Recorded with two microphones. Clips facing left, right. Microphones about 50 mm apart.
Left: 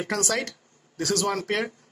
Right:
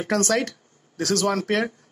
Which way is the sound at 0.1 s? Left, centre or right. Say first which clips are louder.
Right 6 dB; centre.